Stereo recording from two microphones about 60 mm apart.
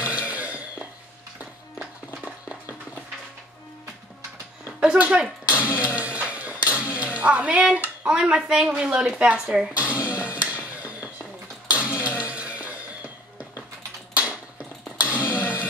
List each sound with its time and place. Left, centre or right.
0.0 s cough: right
4.8 s speech: centre
5.6 s music: right
8.0 s a woman's voice: centre
9.2 s music: centre
14.1 s a sound: centre
15.2 s a sound: left